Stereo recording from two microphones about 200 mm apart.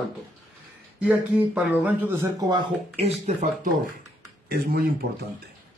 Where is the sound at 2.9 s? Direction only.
35° right (ahead or behind).